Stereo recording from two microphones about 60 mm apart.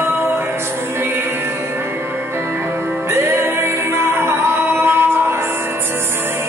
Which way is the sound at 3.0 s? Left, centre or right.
Right.